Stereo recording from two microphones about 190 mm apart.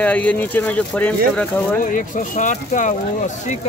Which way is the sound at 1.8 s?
45° left (ahead or behind).